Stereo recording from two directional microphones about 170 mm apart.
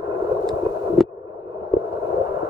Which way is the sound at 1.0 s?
Centre (ahead or behind).